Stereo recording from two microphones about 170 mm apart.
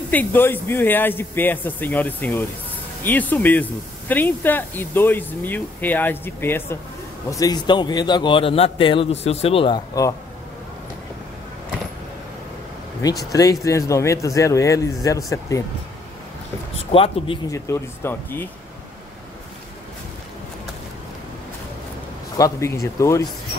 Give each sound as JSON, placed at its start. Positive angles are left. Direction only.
{"t": 0.1, "sound": "a man's voice", "side_deg": 10}
{"t": 13.2, "sound": "a man's voice", "side_deg": 20}
{"t": 16.7, "sound": "speech", "side_deg": 35}
{"t": 17.5, "sound": "speech", "side_deg": 15}
{"t": 22.4, "sound": "speech", "side_deg": 20}